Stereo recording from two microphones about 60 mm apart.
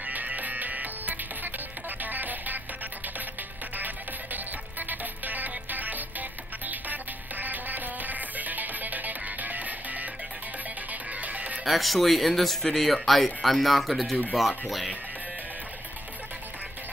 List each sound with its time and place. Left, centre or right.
0.0 s music: right
3.7 s music: right
11.6 s speech: centre